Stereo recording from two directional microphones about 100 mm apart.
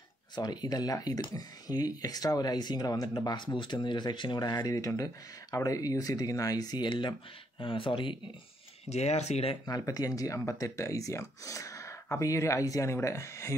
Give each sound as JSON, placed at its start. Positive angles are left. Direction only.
{"t": 0.4, "sound": "speech", "side_deg": 45}
{"t": 7.5, "sound": "speech", "side_deg": 60}
{"t": 8.8, "sound": "speech", "side_deg": 90}
{"t": 9.7, "sound": "speech", "side_deg": 35}